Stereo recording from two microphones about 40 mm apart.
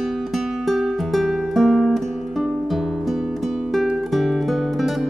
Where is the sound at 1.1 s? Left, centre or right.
Centre.